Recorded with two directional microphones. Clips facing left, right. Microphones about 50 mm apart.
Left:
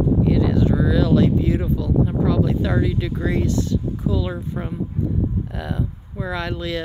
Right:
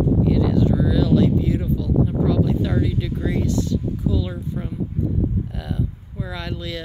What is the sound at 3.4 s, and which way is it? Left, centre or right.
Speech, left.